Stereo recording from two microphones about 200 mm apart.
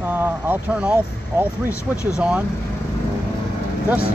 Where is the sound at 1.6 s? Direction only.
15° left (ahead or behind).